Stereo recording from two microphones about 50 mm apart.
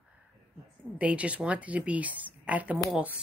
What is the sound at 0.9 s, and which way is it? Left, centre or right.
Speech, right.